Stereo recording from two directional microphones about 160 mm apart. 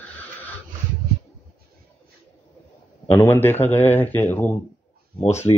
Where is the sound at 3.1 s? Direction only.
15° left (ahead or behind).